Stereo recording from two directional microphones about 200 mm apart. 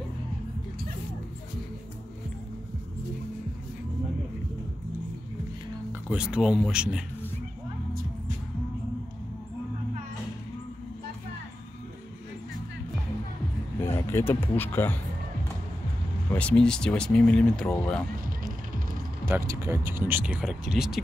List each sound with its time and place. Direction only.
6.0 s speech: 5° right (ahead or behind)
13.9 s speech: 10° left (ahead or behind)
16.3 s speech: 5° left (ahead or behind)
19.2 s speech: 15° right (ahead or behind)